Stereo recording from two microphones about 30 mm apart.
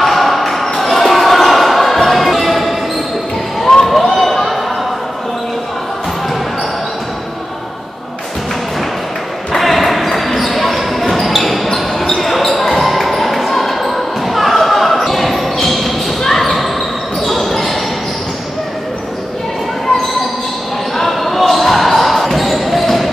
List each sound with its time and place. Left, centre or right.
0.0 s basketball bounce: centre
3.7 s basketball bounce: left
4.1 s basketball bounce: centre
9.6 s basketball bounce: centre
20.9 s basketball bounce: centre